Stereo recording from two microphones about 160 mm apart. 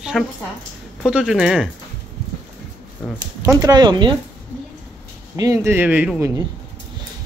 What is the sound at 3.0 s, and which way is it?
Speech, 5° left (ahead or behind).